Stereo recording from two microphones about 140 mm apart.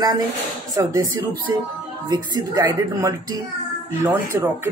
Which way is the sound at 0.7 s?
20° right (ahead or behind).